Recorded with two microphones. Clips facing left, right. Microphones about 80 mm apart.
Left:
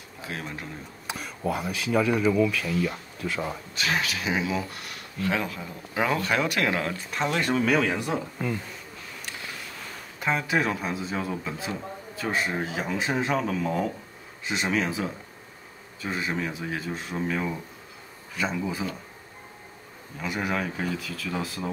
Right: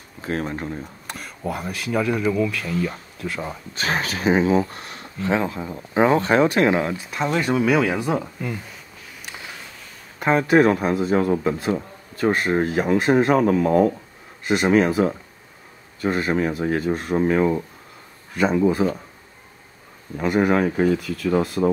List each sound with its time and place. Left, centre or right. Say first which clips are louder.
0.2 s speech: right 9 dB; right
1.0 s speech: left 2 dB; centre
3.7 s speech: right 4 dB; right; by 8.2 s centre
10.1 s speech: right 9 dB; right
20.2 s speech: right 10 dB; right